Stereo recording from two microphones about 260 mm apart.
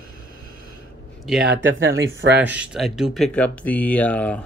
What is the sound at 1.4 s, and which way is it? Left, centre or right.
Speech, right.